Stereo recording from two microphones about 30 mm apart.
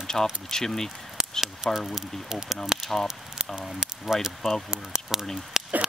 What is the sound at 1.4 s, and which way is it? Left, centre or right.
Speech, centre.